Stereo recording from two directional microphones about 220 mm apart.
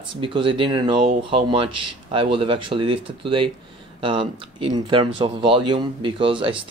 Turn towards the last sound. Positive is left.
turn(degrees=-25)  # may be behind; listen again after turning